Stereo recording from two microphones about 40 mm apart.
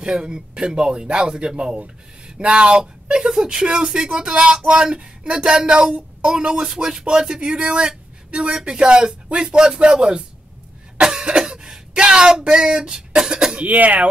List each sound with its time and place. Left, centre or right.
0.0 s speech: right
11.0 s cough: centre
11.9 s speech: right
13.7 s speech: right